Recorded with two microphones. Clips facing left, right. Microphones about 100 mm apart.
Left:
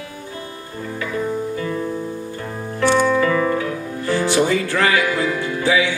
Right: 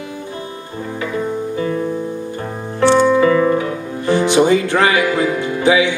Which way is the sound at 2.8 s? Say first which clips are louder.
Right 5 dB; 20° right (ahead or behind).